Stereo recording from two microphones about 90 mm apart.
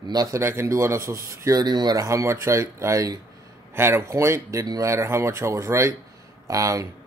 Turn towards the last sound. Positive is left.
turn(degrees=-40)  # may be behind; listen again after turning